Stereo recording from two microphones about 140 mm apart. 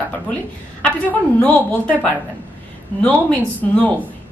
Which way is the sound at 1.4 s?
10° left (ahead or behind).